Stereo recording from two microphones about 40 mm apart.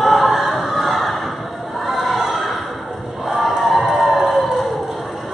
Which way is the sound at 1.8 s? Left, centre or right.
Centre.